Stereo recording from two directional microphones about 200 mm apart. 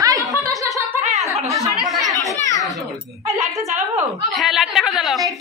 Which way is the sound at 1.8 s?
Centre (ahead or behind).